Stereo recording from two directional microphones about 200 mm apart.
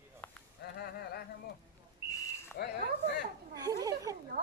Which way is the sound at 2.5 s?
50° left (ahead or behind).